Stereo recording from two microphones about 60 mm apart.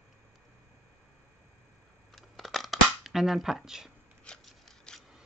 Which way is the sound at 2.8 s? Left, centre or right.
Centre.